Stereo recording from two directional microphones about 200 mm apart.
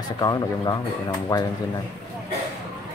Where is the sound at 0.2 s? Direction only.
20° left (ahead or behind).